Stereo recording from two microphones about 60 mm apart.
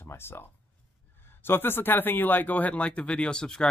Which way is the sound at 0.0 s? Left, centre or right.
Left.